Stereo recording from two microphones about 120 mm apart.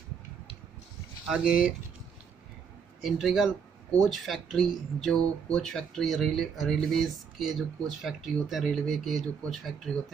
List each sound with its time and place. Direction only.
1.2 s speech: 5° right (ahead or behind)
3.0 s speech: centre (ahead or behind)